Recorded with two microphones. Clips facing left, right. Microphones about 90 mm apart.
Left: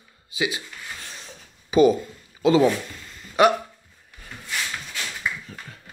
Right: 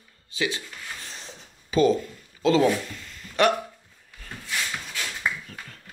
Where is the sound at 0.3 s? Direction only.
10° left (ahead or behind).